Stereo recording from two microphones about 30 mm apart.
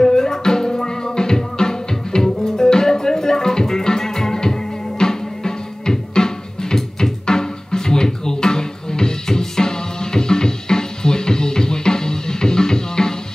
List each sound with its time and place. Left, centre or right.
0.0 s music: centre